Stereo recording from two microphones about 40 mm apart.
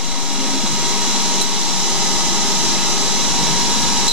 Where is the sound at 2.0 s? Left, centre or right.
Centre.